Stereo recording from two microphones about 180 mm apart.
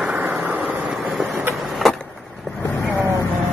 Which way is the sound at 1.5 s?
Centre (ahead or behind).